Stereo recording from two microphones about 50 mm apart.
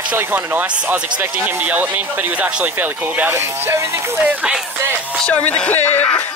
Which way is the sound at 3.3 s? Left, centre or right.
Right.